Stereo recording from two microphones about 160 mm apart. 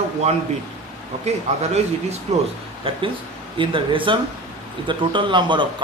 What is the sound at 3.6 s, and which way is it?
Speech, 30° right (ahead or behind).